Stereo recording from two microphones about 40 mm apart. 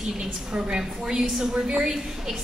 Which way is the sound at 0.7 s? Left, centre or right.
Right.